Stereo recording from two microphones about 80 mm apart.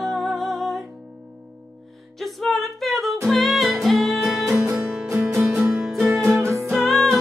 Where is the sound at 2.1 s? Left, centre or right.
Centre.